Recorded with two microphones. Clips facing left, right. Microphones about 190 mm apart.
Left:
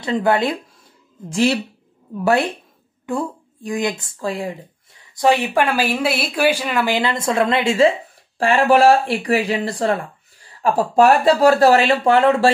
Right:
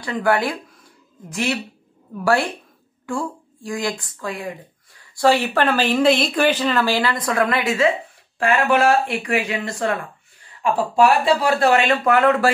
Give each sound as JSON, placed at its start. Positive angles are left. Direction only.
{"t": 0.0, "sound": "speech", "side_deg": 25}
{"t": 2.1, "sound": "speech", "side_deg": 20}